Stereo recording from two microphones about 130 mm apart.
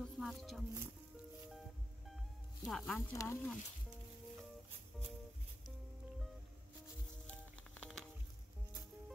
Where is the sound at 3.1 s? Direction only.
20° left (ahead or behind).